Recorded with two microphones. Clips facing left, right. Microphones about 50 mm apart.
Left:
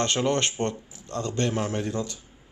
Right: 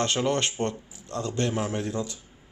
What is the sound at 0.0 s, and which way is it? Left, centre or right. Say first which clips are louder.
A man's voice: left 1 dB; centre.